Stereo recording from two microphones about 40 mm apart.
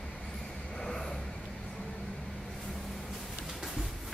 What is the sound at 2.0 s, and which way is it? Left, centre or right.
Vehicle, centre.